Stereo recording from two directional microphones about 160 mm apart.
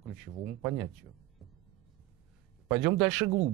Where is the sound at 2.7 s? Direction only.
Centre (ahead or behind).